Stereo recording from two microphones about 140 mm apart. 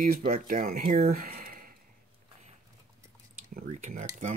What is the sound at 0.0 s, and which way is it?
Speech, 90° right.